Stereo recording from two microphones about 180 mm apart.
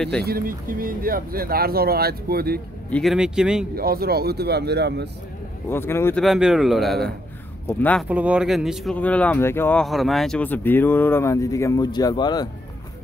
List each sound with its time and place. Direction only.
0.2 s speech: 55° right (ahead or behind)
2.9 s a man's voice: centre (ahead or behind)
3.7 s speech: 55° right (ahead or behind)
5.7 s speech: 15° left (ahead or behind)
6.2 s a man's voice: centre (ahead or behind)
8.1 s speech: 10° right (ahead or behind); by 12.4 s 25° left (ahead or behind)